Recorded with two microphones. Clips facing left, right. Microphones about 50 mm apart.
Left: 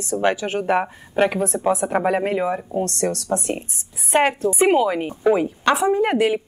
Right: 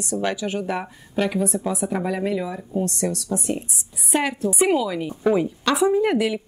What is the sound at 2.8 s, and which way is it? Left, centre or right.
A woman's voice, left.